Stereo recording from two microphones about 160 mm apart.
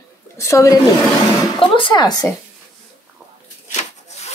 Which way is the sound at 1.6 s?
30° left (ahead or behind).